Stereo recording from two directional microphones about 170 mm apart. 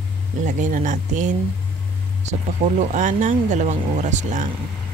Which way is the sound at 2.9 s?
50° right (ahead or behind).